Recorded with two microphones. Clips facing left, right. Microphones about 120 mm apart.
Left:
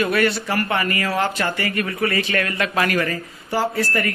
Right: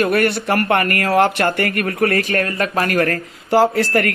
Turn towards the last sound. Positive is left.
turn(degrees=-65)  # may be behind; listen again after turning